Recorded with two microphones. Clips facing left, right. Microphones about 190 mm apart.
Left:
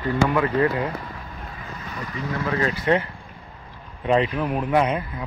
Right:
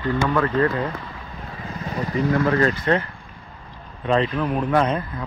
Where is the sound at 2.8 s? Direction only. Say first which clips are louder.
Even; 15° left (ahead or behind).